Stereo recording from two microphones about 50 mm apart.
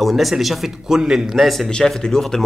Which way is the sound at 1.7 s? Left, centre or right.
Centre.